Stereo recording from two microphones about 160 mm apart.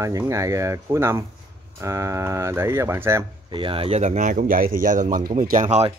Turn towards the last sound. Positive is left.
turn(degrees=-45)  # may be behind; listen again after turning